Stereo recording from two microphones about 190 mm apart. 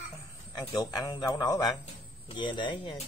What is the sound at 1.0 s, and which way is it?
Speech, 20° left (ahead or behind).